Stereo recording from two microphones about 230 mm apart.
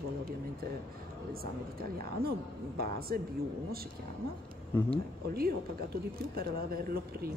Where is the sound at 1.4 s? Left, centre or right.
Right.